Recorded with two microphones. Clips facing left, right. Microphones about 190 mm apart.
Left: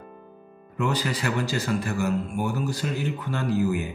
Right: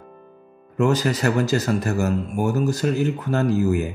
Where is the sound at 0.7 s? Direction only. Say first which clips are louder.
Right 7 dB; 45° right (ahead or behind).